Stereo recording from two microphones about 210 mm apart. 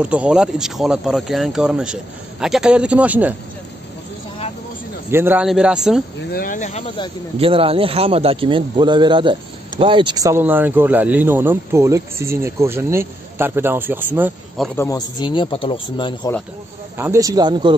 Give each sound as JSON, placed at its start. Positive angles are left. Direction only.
{"t": 0.0, "sound": "speech", "side_deg": -5}
{"t": 5.1, "sound": "speech", "side_deg": -10}
{"t": 6.3, "sound": "speech", "side_deg": 40}
{"t": 7.3, "sound": "speech", "side_deg": -25}
{"t": 14.8, "sound": "speech", "side_deg": 15}
{"t": 16.9, "sound": "speech", "side_deg": -10}